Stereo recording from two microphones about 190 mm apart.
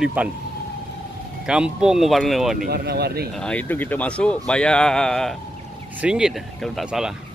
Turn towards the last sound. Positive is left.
turn(degrees=0)  # may be behind; listen again after turning